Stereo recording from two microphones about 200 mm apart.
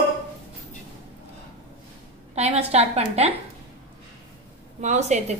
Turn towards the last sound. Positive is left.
turn(degrees=-35)  # may be behind; listen again after turning